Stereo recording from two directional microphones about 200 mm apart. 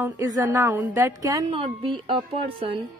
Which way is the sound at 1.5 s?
30° right (ahead or behind).